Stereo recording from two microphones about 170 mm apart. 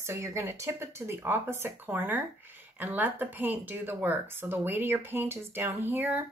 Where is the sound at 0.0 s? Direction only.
15° right (ahead or behind).